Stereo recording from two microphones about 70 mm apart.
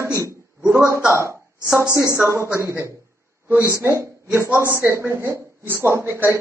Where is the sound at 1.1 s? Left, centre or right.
Right.